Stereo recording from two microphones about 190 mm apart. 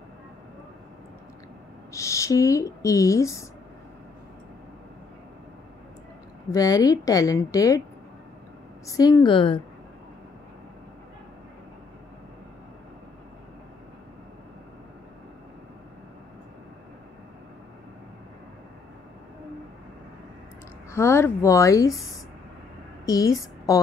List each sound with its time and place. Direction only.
1.9 s speech: 15° left (ahead or behind)
6.5 s a woman's voice: 20° left (ahead or behind)
8.8 s a woman's voice: 15° left (ahead or behind)
20.9 s speech: 15° left (ahead or behind)
23.0 s speech: 20° left (ahead or behind)